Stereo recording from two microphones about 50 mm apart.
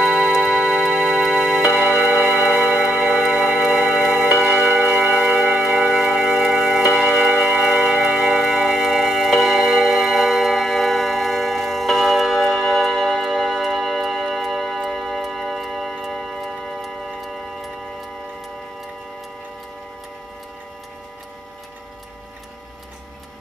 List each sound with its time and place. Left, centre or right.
0.0 s tick-tock: right
4.4 s music: centre